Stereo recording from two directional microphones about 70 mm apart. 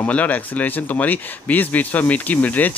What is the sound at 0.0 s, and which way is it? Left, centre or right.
Speech, left.